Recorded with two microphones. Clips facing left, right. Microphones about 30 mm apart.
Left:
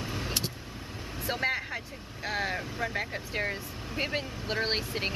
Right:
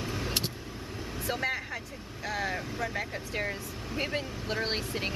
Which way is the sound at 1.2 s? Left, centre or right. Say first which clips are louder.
Left 2 dB; centre.